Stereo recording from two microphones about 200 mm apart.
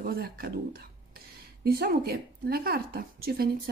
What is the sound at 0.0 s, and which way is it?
Speech, 50° right (ahead or behind).